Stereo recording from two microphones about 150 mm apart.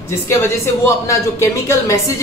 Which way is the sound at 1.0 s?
20° left (ahead or behind).